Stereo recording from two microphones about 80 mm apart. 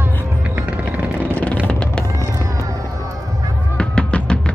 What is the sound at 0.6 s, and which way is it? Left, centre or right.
Music, centre.